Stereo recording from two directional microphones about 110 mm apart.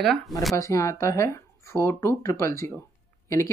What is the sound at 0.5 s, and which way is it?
Speech, 25° left (ahead or behind).